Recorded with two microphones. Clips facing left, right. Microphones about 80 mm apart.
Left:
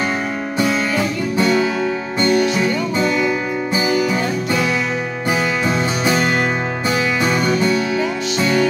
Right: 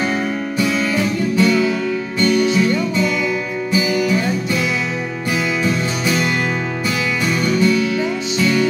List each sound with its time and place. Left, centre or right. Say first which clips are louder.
0.6 s music: left 1 dB; left
4.0 s music: right 1 dB; left
5.6 s music: left 1 dB; left
7.2 s music: right 3 dB; left